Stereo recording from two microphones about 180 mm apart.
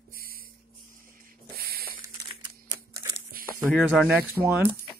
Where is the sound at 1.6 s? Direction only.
55° right (ahead or behind).